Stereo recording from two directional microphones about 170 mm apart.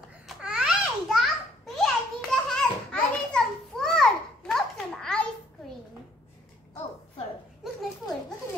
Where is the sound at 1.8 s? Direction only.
5° left (ahead or behind).